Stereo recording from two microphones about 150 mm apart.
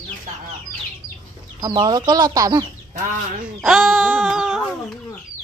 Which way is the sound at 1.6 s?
30° right (ahead or behind).